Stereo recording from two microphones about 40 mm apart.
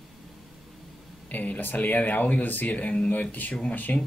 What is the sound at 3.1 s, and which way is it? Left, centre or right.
Speech, left.